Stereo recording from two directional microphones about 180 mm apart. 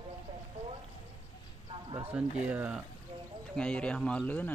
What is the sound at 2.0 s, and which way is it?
Speech, 10° right (ahead or behind).